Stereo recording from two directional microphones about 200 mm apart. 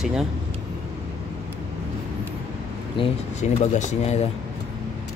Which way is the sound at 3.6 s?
35° left (ahead or behind).